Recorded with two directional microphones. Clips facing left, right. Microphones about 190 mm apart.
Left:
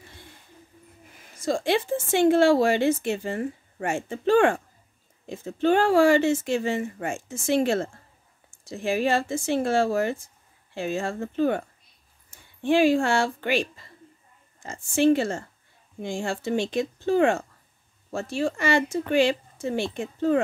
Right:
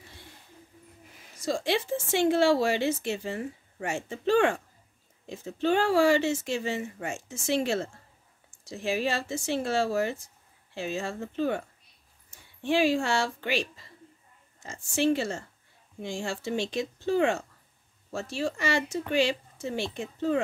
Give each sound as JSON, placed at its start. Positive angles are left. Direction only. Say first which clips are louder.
{"t": 1.3, "sound": "speech", "louder": "left 4 dB", "side_deg": 50}